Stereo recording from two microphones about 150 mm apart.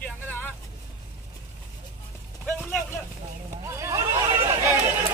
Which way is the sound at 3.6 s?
20° right (ahead or behind).